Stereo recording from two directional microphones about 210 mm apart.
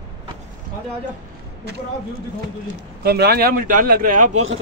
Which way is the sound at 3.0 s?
50° right (ahead or behind).